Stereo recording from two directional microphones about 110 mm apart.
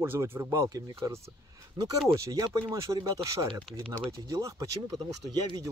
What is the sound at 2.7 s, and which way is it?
Speech, 30° right (ahead or behind).